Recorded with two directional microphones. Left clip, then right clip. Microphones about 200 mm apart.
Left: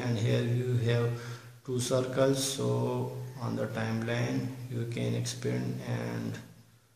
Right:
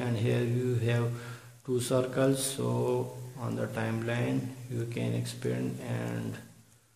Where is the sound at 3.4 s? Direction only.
45° right (ahead or behind).